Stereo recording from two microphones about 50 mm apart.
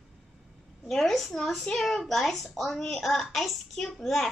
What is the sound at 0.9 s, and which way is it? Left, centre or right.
A child's voice, centre.